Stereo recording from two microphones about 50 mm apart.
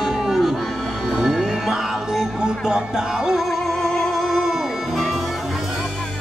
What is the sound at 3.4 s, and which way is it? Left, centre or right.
Music, centre.